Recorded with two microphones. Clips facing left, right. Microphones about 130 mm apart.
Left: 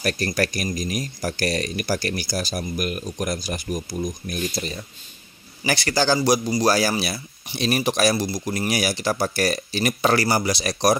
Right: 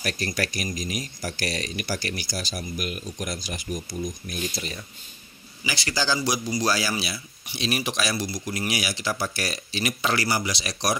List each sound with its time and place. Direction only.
0.0 s speech: 45° left (ahead or behind)
5.7 s speech: 55° left (ahead or behind)